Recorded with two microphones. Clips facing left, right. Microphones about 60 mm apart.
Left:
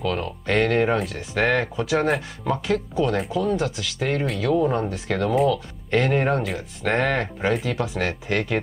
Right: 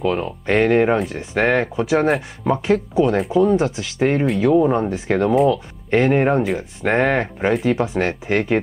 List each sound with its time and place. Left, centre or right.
0.0 s speech: right